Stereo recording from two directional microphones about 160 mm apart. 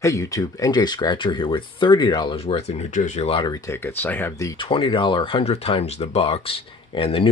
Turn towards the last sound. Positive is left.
turn(degrees=35)  # may be behind; listen again after turning